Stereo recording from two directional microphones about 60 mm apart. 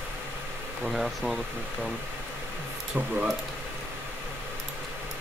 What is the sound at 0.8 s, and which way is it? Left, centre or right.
Speech, centre.